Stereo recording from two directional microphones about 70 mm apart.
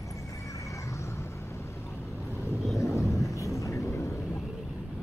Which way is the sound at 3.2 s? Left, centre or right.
Left.